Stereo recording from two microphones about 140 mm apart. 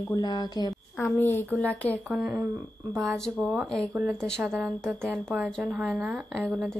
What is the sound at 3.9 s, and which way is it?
A woman's voice, 15° right (ahead or behind).